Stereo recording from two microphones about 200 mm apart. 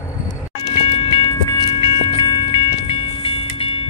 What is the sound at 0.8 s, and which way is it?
Train, 25° left (ahead or behind).